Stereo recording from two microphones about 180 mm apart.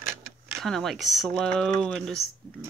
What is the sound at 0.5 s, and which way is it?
Speech, centre (ahead or behind).